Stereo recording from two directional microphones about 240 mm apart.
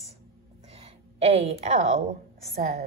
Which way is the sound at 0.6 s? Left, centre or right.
Right.